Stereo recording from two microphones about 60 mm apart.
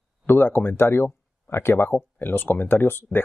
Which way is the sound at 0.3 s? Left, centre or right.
Left.